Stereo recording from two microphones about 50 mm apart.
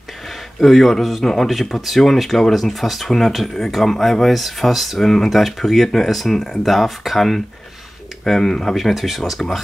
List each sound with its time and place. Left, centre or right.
0.6 s speech: centre
6.6 s speech: centre